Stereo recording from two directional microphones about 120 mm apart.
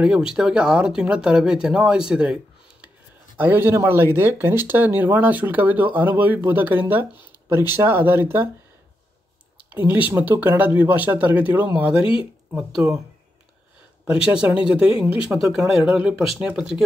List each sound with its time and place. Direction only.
0.0 s speech: 5° right (ahead or behind)
9.7 s speech: 15° right (ahead or behind)
12.0 s speech: 50° left (ahead or behind)
12.5 s speech: 5° right (ahead or behind)
14.0 s speech: 10° right (ahead or behind)